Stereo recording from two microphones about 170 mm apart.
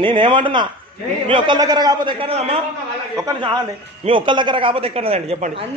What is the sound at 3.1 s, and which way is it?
A man's voice, 20° right (ahead or behind).